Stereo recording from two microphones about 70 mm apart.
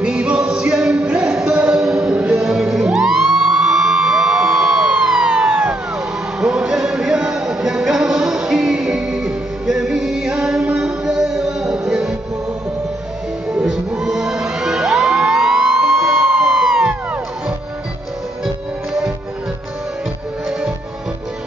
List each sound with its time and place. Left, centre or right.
0.0 s a capella: centre
1.2 s a sound: centre
2.1 s music: centre
3.3 s emergency vehicle: centre
6.4 s music: centre
13.7 s music: centre